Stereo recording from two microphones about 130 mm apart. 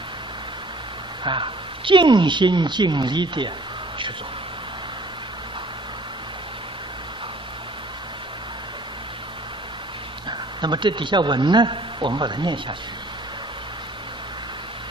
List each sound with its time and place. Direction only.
1.2 s a woman's voice: 40° right (ahead or behind)
10.6 s a woman's voice: 35° right (ahead or behind)